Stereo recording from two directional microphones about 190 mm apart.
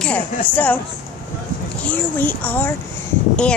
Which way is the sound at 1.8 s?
10° left (ahead or behind).